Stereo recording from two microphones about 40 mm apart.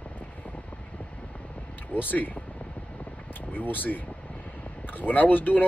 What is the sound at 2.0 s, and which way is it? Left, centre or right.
Speech, left.